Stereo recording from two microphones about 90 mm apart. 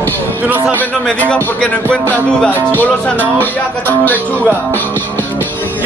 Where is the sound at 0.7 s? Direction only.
20° left (ahead or behind).